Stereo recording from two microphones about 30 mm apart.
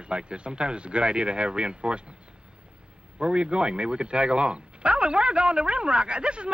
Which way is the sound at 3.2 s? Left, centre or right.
Right.